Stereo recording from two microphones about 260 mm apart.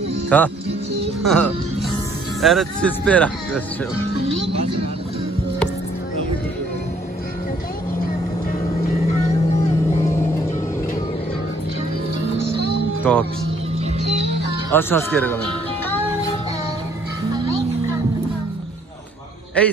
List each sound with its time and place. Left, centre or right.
0.3 s speech: centre
1.2 s music: centre
2.4 s speech: centre
4.4 s music: right
8.5 s vehicle: left
10.0 s music: centre
12.5 s music: right
13.1 s speech: centre
14.0 s music: right
14.7 s speech: centre